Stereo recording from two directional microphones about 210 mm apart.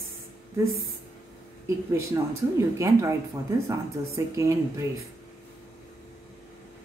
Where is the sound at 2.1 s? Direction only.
15° right (ahead or behind).